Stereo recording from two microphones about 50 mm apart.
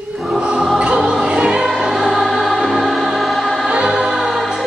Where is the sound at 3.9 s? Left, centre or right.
Centre.